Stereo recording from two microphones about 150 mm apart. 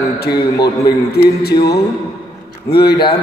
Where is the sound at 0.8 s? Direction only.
90° left.